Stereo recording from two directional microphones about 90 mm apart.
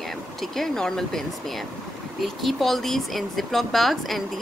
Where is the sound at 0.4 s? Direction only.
5° left (ahead or behind).